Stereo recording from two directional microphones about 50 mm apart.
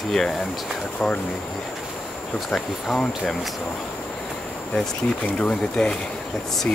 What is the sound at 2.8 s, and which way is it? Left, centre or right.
Speech, centre.